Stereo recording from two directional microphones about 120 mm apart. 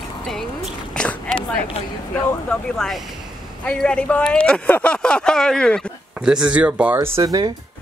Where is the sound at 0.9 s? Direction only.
10° left (ahead or behind).